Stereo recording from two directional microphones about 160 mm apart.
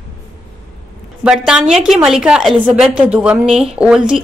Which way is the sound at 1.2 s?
5° right (ahead or behind).